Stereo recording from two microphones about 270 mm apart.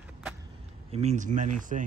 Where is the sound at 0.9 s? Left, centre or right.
Right.